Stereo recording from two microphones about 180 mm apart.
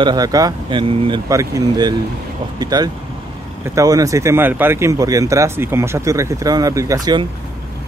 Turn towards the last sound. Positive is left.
turn(degrees=-20)  # may be behind; listen again after turning